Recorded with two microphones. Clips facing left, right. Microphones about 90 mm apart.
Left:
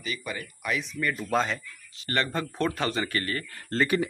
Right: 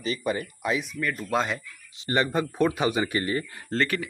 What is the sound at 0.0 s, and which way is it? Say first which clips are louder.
Speech: right 7 dB; 35° right (ahead or behind).